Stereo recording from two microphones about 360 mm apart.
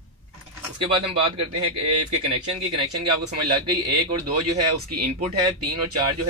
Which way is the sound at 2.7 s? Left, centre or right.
Right.